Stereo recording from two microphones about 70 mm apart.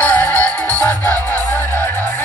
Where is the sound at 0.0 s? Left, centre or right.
Left.